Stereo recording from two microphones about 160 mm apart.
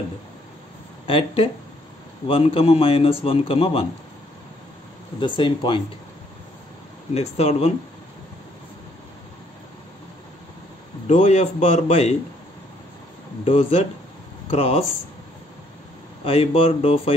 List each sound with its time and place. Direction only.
1.0 s a man's voice: 35° left (ahead or behind)
5.2 s a man's voice: 30° left (ahead or behind)
7.2 s a man's voice: 40° left (ahead or behind)
11.1 s a man's voice: 45° left (ahead or behind)
13.4 s a man's voice: 40° left (ahead or behind)
16.3 s a man's voice: 40° left (ahead or behind)